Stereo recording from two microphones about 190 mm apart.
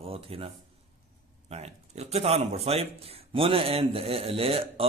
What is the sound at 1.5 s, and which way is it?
Speech, 35° right (ahead or behind).